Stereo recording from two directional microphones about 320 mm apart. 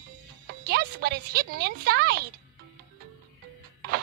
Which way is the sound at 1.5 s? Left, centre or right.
Right.